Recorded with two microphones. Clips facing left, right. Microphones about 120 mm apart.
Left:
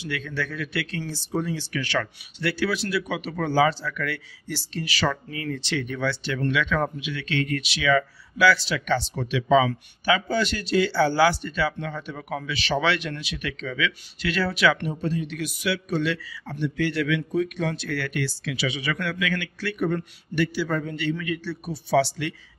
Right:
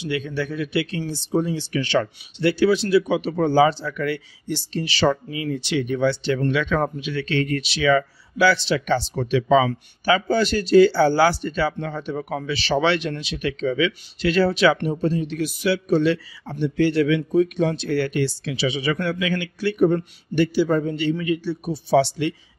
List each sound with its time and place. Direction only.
0.0 s speech: 20° right (ahead or behind)
5.3 s speech: 15° right (ahead or behind)